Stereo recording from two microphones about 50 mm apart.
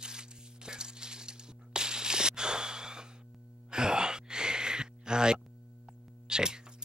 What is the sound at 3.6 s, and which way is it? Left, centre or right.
Sigh, centre.